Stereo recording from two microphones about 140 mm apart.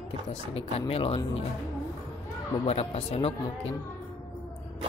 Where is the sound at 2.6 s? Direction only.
45° left (ahead or behind).